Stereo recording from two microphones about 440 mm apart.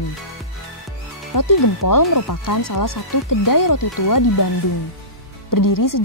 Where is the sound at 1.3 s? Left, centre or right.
Left.